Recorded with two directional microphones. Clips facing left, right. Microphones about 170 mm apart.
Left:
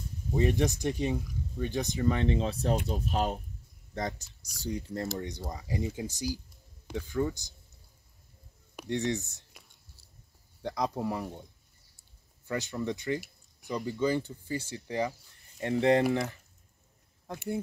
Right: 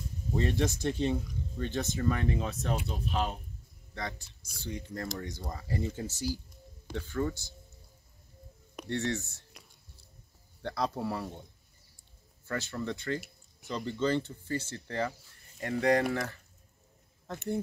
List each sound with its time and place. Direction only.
0.3 s speech: 15° left (ahead or behind)
8.8 s speech: 15° left (ahead or behind)
9.5 s whispering: centre (ahead or behind)
10.6 s speech: 15° left (ahead or behind)
12.4 s speech: 15° left (ahead or behind)
15.6 s speech: 25° left (ahead or behind)
17.3 s speech: 10° left (ahead or behind)